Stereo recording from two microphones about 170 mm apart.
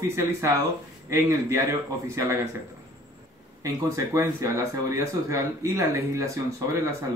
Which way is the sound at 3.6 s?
20° right (ahead or behind).